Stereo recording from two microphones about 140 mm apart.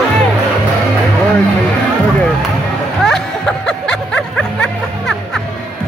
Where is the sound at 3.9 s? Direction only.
5° left (ahead or behind).